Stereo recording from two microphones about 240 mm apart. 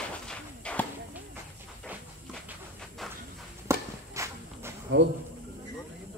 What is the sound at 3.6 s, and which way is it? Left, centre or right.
Walk, centre.